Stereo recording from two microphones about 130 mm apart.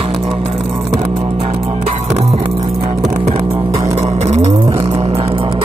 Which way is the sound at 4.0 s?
55° right (ahead or behind).